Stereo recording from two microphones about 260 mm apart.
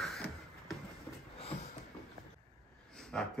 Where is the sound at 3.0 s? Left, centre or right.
Centre.